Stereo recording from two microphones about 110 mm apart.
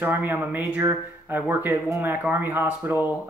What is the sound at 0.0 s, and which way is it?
Speech, 15° right (ahead or behind).